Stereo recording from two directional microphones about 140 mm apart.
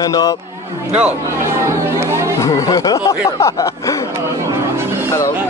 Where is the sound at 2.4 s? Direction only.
25° left (ahead or behind).